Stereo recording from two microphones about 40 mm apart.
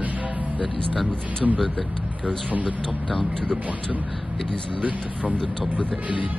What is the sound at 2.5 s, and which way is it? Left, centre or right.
Speech, right.